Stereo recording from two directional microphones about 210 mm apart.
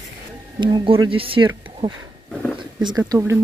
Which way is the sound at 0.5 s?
25° right (ahead or behind).